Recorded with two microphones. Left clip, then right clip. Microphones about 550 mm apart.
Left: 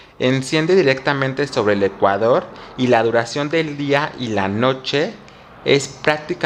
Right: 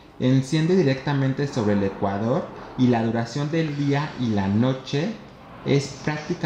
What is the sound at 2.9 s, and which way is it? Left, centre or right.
Speech, left.